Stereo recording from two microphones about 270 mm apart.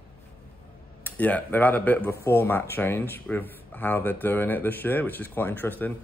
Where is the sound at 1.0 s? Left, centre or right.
Centre.